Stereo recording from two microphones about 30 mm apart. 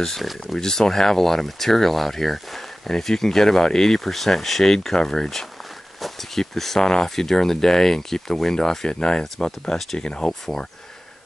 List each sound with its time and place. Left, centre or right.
0.2 s speech: centre
0.6 s speech: centre
5.9 s a sound: centre
6.4 s speech: centre; by 10.3 s left
10.4 s speech: centre